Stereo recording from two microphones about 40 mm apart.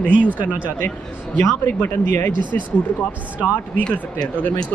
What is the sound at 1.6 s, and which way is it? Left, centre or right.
Speech, left.